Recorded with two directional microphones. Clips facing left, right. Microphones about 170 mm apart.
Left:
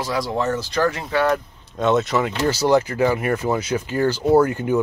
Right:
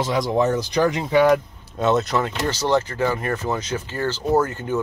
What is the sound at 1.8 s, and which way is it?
Speech, centre (ahead or behind).